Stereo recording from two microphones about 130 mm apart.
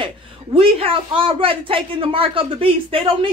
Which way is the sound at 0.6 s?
45° right (ahead or behind).